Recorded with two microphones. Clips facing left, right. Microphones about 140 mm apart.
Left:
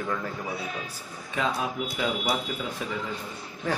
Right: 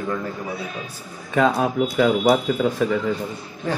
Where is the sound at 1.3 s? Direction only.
50° right (ahead or behind).